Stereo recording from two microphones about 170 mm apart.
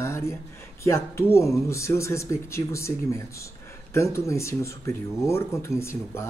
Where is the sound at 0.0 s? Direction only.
15° left (ahead or behind).